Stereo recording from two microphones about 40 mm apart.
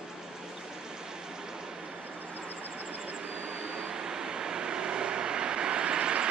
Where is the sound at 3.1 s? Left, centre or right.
Right.